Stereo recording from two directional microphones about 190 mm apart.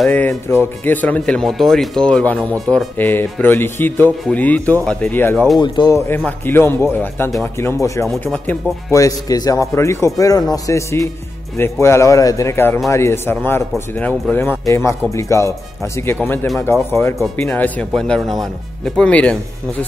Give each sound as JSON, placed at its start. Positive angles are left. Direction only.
{"t": 0.0, "sound": "speech", "side_deg": 10}
{"t": 5.6, "sound": "speech", "side_deg": 20}
{"t": 8.1, "sound": "speech", "side_deg": 5}
{"t": 8.9, "sound": "speech", "side_deg": 20}